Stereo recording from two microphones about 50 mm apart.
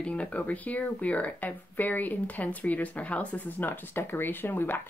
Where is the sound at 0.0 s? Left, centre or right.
Left.